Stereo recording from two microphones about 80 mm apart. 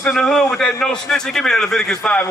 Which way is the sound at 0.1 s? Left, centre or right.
Centre.